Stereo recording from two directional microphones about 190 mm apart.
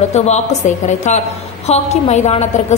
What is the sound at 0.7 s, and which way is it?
A woman's voice, 40° left (ahead or behind).